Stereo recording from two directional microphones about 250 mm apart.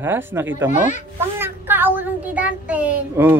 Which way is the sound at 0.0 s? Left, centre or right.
Centre.